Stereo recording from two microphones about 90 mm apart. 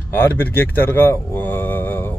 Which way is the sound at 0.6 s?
25° left (ahead or behind).